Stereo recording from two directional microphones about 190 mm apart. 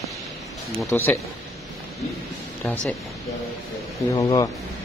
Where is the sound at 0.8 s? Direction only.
10° left (ahead or behind).